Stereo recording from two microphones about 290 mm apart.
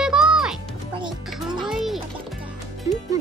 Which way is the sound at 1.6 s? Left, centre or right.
Centre.